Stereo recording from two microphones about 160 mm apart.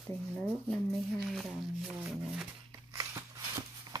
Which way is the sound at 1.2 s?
Centre (ahead or behind).